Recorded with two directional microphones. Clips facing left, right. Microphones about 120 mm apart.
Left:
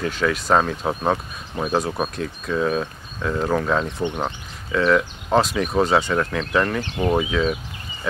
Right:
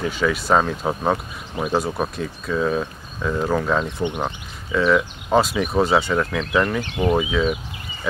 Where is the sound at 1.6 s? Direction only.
15° right (ahead or behind).